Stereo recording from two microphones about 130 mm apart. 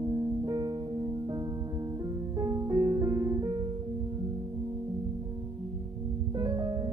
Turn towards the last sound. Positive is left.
turn(degrees=-30)  # may be behind; listen again after turning